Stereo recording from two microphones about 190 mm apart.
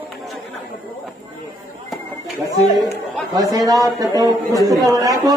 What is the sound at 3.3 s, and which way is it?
A man's voice, 20° right (ahead or behind).